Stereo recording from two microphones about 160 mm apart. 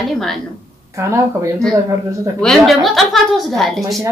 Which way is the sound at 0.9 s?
20° right (ahead or behind).